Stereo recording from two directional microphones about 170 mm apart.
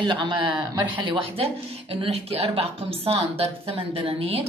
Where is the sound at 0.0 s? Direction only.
25° right (ahead or behind).